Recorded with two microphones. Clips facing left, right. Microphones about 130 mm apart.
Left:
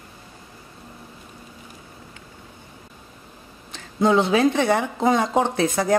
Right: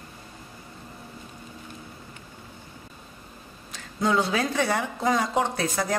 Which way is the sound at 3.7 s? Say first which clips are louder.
Left 6 dB; 25° left (ahead or behind).